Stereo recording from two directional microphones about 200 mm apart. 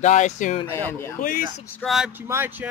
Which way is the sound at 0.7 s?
10° left (ahead or behind).